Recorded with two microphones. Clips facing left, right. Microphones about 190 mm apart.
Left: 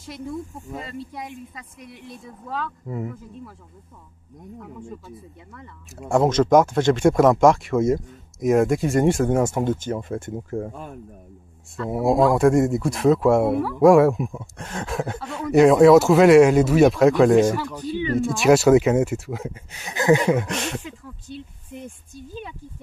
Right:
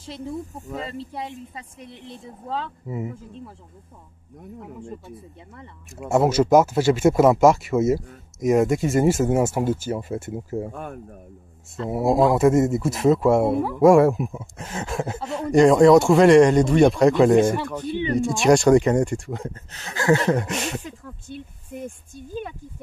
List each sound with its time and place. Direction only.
0.0 s speech: 30° right (ahead or behind)
5.9 s speech: 5° right (ahead or behind)
10.7 s speech: 55° right (ahead or behind)
11.9 s speech: centre (ahead or behind)
18.1 s speech: centre (ahead or behind)
20.3 s speech: centre (ahead or behind)
20.8 s speech: 50° right (ahead or behind)